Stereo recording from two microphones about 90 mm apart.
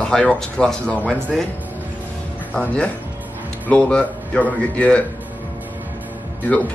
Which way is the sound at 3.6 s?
10° left (ahead or behind).